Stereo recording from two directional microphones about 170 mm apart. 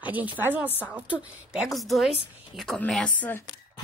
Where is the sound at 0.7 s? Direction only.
10° left (ahead or behind).